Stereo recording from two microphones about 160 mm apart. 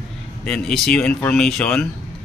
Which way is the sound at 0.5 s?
5° left (ahead or behind).